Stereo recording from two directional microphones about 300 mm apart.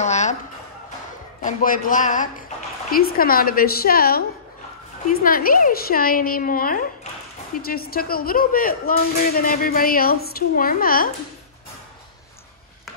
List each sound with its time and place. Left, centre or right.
0.0 s a sound: left
1.4 s speech: left
5.2 s speech: left